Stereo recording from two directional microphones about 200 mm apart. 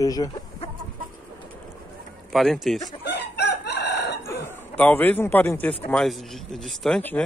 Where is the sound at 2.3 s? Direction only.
Centre (ahead or behind).